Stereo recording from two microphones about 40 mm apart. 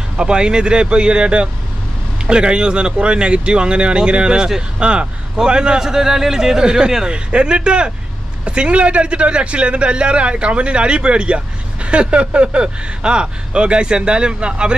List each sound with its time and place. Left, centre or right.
0.2 s a man's voice: right